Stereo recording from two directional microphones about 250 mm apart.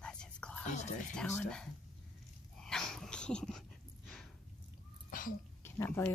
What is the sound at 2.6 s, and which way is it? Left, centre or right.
Dog, centre.